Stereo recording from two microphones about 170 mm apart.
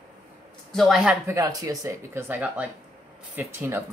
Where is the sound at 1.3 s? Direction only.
20° right (ahead or behind).